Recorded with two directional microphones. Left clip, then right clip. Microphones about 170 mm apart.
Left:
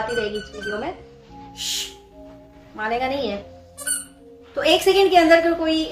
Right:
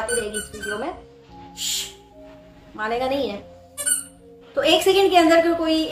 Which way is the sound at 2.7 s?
15° right (ahead or behind).